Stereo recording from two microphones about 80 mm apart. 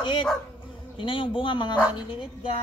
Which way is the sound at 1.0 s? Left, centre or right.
Left.